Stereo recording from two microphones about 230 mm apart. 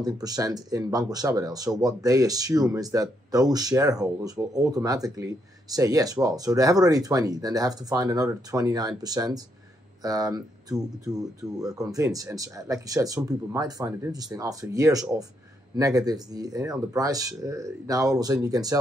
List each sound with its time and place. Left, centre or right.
0.0 s speech: centre